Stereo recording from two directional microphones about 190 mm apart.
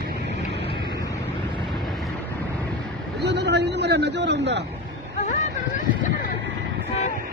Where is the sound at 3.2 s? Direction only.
60° right (ahead or behind).